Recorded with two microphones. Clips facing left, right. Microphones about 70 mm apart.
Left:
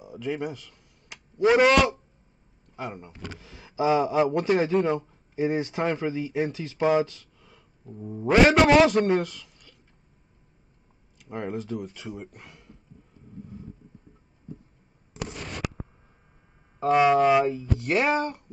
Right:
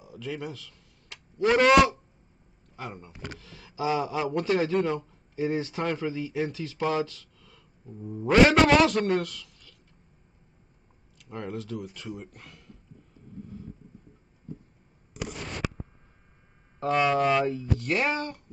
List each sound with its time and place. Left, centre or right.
0.0 s a sound: left
2.7 s a man's voice: centre
11.1 s speech: left
16.8 s speech: centre